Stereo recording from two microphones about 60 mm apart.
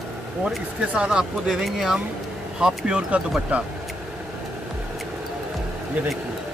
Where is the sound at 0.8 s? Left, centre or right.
Centre.